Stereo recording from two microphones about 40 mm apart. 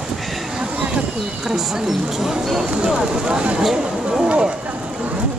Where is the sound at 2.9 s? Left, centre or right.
Centre.